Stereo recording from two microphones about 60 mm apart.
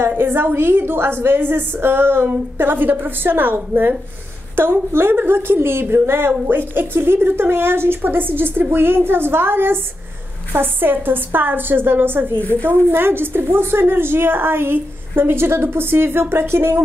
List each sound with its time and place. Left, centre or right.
0.2 s a woman's voice: right
12.4 s speech: left
12.6 s a woman's voice: right